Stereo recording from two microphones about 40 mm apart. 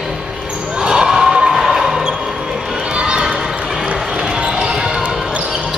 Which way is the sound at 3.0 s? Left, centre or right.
Centre.